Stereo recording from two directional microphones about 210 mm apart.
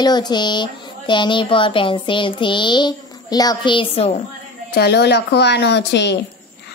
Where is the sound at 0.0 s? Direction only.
20° left (ahead or behind).